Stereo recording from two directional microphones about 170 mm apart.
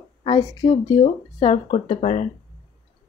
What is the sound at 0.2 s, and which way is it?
Speech, 20° left (ahead or behind).